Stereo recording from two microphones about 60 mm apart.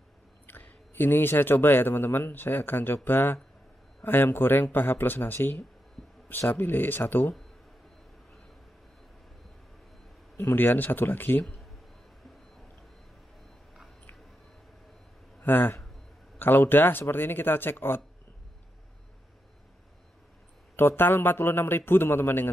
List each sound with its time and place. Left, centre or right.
0.5 s speech: left
10.3 s speech: left
15.4 s a man's voice: left
20.7 s speech: left